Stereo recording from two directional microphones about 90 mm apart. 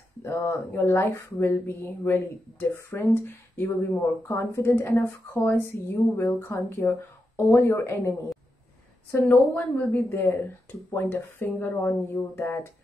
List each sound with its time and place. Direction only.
0.2 s speech: 25° left (ahead or behind)
9.5 s speech: 15° left (ahead or behind)